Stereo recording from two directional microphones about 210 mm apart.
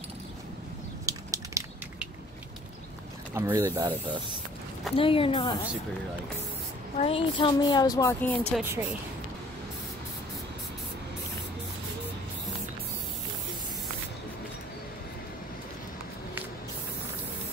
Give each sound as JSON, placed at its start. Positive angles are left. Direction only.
{"t": 1.0, "sound": "a sound", "side_deg": -15}
{"t": 3.3, "sound": "speech", "side_deg": -10}
{"t": 4.9, "sound": "speech", "side_deg": 25}
{"t": 7.0, "sound": "speech", "side_deg": 25}
{"t": 8.5, "sound": "speech", "side_deg": -10}